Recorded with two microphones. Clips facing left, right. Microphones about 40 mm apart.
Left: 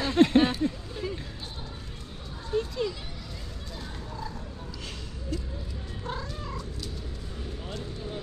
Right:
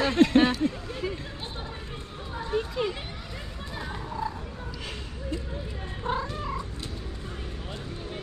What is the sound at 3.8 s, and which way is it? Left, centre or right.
Horse, right.